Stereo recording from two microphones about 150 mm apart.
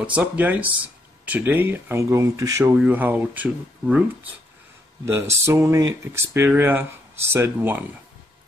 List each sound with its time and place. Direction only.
0.0 s speech: 10° right (ahead or behind)
5.0 s speech: 15° right (ahead or behind)